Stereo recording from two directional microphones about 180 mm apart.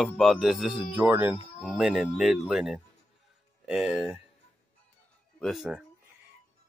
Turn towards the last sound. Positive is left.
turn(degrees=0)  # may be behind; listen again after turning